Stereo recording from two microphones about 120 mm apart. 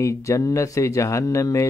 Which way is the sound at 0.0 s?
25° left (ahead or behind).